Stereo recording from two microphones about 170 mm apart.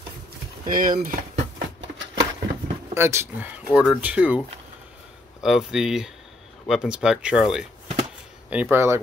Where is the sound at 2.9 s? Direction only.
15° right (ahead or behind).